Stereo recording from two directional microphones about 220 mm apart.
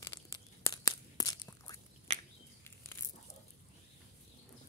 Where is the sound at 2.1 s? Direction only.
30° right (ahead or behind).